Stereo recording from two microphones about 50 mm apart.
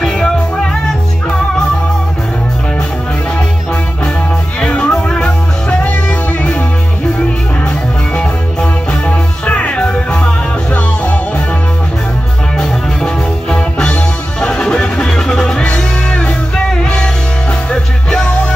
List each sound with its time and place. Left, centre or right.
4.6 s music: left
5.7 s music: left
9.0 s music: left
12.5 s music: centre